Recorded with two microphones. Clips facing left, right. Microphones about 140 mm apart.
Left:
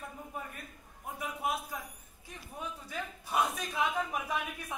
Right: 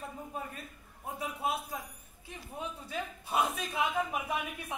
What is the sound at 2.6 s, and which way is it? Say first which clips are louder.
A man's voice: right 2 dB; 20° right (ahead or behind).